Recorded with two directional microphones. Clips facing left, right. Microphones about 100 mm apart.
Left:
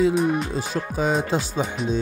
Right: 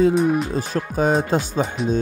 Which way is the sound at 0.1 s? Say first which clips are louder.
Right 3 dB; centre (ahead or behind).